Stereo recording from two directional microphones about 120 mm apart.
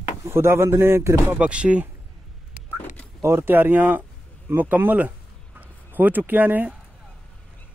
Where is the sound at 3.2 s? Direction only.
20° right (ahead or behind).